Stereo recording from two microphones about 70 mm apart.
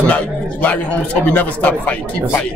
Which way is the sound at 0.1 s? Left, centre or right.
Left.